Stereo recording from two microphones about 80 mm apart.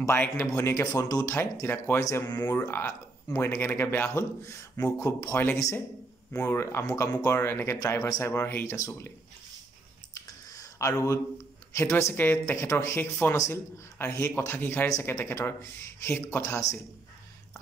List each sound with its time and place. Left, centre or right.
0.5 s speech: left
1.3 s speech: left
5.3 s a man's voice: left
10.1 s clicking: left
11.7 s a man's voice: left
14.9 s speech: left